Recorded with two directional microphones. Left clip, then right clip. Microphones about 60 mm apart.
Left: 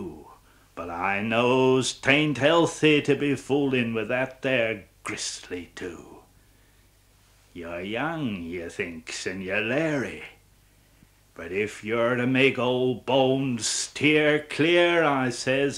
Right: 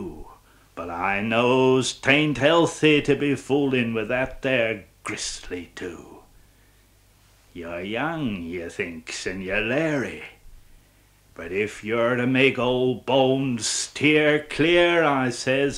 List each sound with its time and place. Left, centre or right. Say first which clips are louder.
0.0 s speech: right 2 dB; left
7.5 s speech: right 2 dB; left